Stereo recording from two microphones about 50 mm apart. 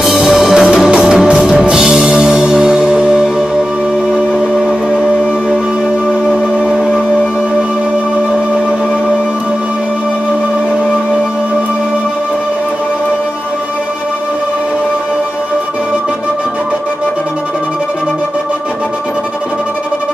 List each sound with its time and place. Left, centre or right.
0.0 s music: centre
0.7 s music: centre
4.3 s music: centre
6.6 s music: centre